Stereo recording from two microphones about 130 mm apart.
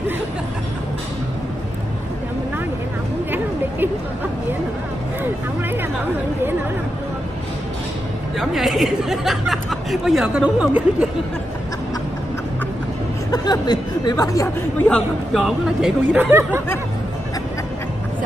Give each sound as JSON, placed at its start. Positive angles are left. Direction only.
{"t": 8.4, "sound": "speech", "side_deg": 0}
{"t": 13.3, "sound": "speech", "side_deg": 30}
{"t": 14.8, "sound": "a man's voice", "side_deg": 10}
{"t": 15.4, "sound": "speech", "side_deg": -5}